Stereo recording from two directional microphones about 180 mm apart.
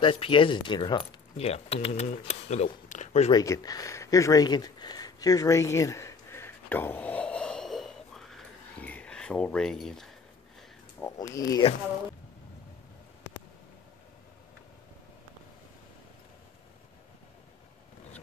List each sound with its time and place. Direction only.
0.0 s speech: 30° left (ahead or behind)
3.3 s a sound: 20° left (ahead or behind); by 10.1 s centre (ahead or behind)
11.0 s speech: 15° left (ahead or behind)